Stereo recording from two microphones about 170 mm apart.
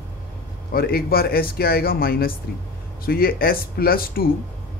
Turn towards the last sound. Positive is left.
turn(degrees=60)  # may be behind; listen again after turning